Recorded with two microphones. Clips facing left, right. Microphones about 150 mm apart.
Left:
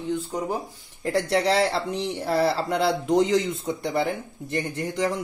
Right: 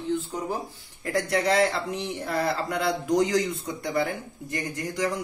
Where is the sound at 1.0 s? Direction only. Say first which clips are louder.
Left 3 dB; 30° left (ahead or behind).